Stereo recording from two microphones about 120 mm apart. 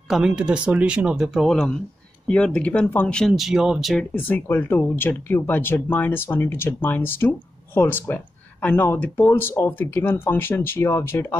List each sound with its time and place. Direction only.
0.1 s speech: 10° right (ahead or behind)
4.0 s speech: 15° left (ahead or behind)